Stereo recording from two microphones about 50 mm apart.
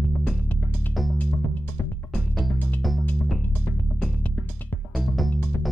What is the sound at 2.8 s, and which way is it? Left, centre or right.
Music, centre.